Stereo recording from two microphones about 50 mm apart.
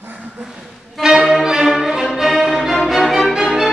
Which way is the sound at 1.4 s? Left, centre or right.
Centre.